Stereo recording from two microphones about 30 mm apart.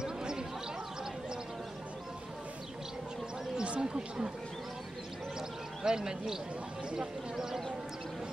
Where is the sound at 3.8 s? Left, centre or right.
Right.